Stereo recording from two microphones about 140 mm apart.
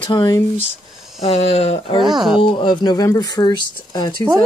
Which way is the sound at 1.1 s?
50° left (ahead or behind).